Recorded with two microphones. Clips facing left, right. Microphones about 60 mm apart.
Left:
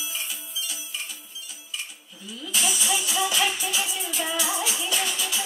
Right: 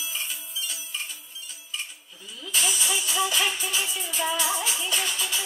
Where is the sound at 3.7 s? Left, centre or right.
Right.